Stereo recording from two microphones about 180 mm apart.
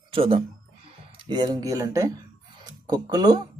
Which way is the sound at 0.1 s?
30° right (ahead or behind).